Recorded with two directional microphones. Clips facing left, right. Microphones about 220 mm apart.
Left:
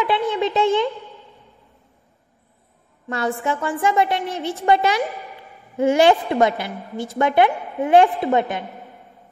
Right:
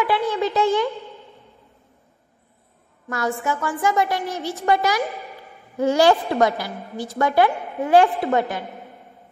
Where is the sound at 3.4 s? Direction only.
30° left (ahead or behind).